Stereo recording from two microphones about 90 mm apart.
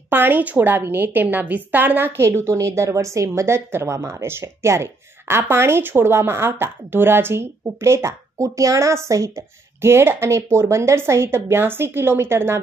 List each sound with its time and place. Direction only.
0.1 s a woman's voice: 20° right (ahead or behind)